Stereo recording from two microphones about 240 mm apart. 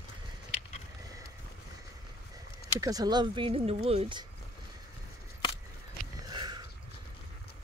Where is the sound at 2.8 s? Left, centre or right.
Centre.